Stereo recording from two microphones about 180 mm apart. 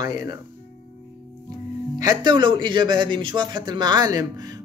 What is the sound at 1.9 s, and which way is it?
Speech, 25° right (ahead or behind).